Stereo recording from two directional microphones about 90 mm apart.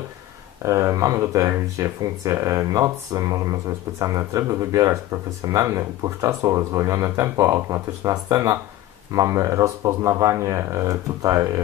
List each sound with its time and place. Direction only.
0.6 s speech: 35° right (ahead or behind)